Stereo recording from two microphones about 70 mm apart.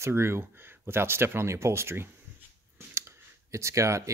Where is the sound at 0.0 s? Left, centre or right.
Right.